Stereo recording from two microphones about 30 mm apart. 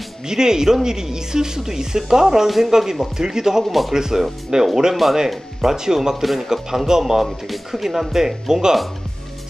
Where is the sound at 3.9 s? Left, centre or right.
Centre.